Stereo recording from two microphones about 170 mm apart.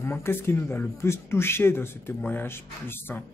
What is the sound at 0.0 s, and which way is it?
Speech, 15° left (ahead or behind).